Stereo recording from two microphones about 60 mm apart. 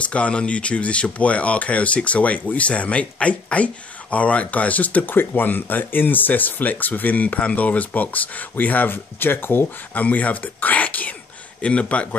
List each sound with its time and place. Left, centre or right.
0.0 s speech: left
10.0 s speech: left